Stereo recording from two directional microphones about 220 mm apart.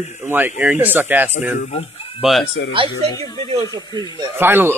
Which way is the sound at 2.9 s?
15° left (ahead or behind).